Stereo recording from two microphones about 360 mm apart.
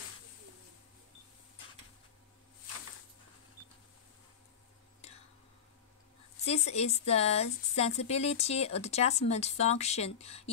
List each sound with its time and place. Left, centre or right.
6.4 s speech: centre